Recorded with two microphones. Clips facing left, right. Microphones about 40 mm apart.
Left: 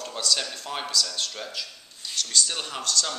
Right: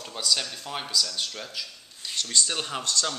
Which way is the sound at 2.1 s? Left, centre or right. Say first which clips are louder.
Left 1 dB; right.